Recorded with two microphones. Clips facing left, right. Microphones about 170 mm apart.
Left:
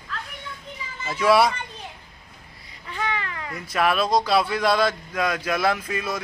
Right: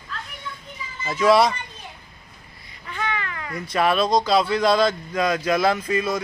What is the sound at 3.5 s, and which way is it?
A man's voice, 5° left (ahead or behind).